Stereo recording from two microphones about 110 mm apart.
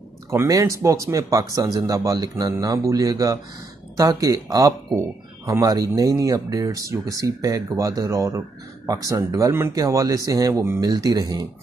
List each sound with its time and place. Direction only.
0.3 s speech: 30° right (ahead or behind)
10.8 s speech: 35° right (ahead or behind)